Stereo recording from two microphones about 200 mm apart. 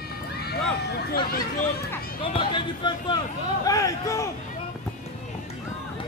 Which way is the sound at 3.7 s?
15° left (ahead or behind).